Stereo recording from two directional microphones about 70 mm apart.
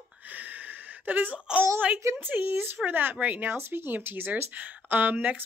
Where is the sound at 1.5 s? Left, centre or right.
Centre.